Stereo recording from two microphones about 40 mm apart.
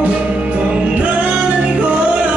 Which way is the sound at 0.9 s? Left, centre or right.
Right.